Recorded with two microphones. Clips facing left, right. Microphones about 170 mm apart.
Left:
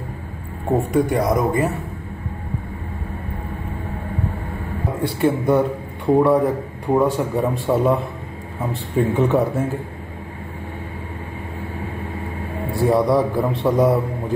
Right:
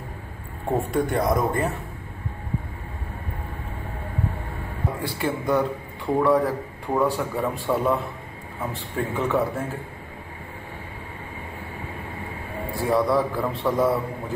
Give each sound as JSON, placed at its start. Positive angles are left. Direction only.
{"t": 0.7, "sound": "speech", "side_deg": 10}
{"t": 5.0, "sound": "speech", "side_deg": 60}
{"t": 5.5, "sound": "a man's voice", "side_deg": 20}
{"t": 12.9, "sound": "a man's voice", "side_deg": 20}